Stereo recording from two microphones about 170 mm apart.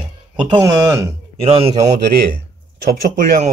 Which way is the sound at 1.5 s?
35° right (ahead or behind).